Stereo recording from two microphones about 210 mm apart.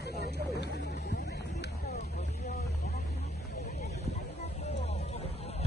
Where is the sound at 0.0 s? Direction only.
50° left (ahead or behind).